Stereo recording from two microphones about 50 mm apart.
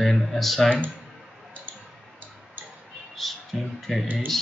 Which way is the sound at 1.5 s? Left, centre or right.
Right.